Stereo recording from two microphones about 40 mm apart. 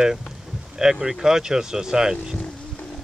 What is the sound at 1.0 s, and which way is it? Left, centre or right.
Speech, centre.